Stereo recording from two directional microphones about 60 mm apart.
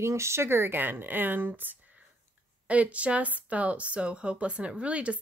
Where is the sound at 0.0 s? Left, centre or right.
Right.